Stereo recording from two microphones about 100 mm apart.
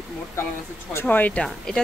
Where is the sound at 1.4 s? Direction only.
5° left (ahead or behind).